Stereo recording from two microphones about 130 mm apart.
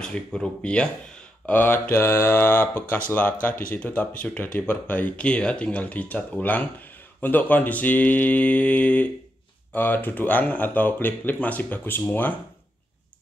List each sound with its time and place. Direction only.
0.0 s speech: 5° left (ahead or behind)